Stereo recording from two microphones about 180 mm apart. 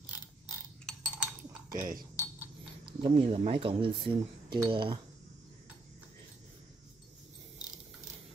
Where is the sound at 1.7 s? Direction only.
50° right (ahead or behind).